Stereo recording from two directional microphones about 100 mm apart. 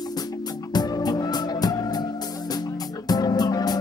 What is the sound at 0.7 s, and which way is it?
Music, 40° left (ahead or behind).